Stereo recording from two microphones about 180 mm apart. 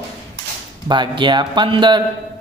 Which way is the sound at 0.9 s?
25° right (ahead or behind).